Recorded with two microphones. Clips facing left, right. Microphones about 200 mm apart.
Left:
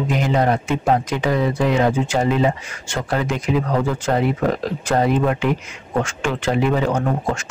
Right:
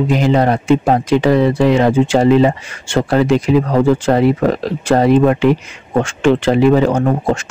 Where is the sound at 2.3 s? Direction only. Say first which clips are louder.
Right 8 dB; 85° right.